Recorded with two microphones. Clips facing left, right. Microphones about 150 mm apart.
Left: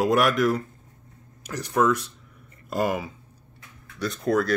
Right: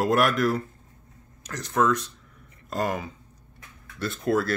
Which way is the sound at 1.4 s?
10° left (ahead or behind).